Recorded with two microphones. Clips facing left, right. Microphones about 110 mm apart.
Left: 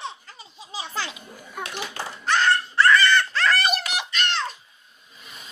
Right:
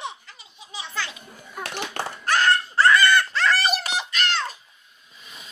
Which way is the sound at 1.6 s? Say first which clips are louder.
Right 3 dB; 60° right (ahead or behind).